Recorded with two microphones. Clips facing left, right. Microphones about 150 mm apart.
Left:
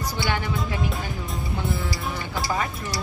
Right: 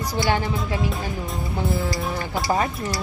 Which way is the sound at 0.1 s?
35° right (ahead or behind).